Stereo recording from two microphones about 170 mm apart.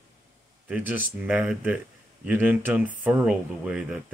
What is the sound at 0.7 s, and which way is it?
Speech, 10° right (ahead or behind).